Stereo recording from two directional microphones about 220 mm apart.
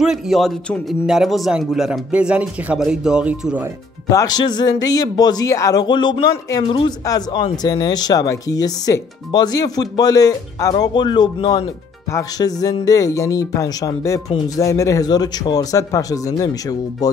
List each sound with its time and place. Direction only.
0.0 s a man's voice: centre (ahead or behind)
4.1 s speech: 15° left (ahead or behind)